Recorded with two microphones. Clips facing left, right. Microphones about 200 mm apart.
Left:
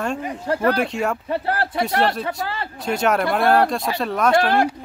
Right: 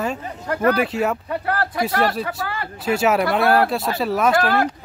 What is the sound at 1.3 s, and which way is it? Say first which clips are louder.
Speech: left 1 dB; 25° left (ahead or behind).